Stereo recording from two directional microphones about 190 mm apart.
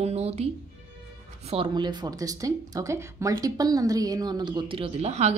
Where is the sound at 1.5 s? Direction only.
25° right (ahead or behind).